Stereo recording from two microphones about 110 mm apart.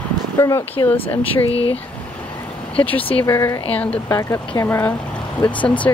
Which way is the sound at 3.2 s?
30° left (ahead or behind).